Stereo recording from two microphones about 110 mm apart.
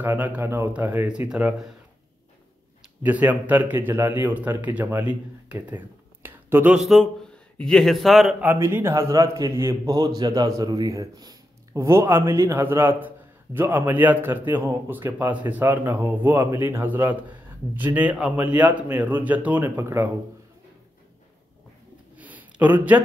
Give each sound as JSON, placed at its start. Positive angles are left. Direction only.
{"t": 0.0, "sound": "a man's voice", "side_deg": -15}
{"t": 3.0, "sound": "a man's voice", "side_deg": -15}
{"t": 6.8, "sound": "speech", "side_deg": 0}
{"t": 8.4, "sound": "a man's voice", "side_deg": -20}
{"t": 22.1, "sound": "a sound", "side_deg": -15}